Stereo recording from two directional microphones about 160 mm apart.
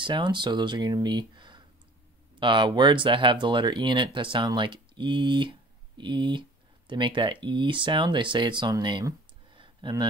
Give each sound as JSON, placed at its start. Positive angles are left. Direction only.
{"t": 0.0, "sound": "speech", "side_deg": -30}